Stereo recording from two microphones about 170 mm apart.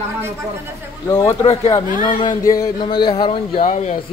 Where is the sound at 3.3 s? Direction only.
40° left (ahead or behind).